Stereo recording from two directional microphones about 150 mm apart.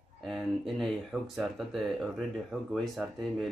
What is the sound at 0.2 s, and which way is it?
Speech, centre (ahead or behind).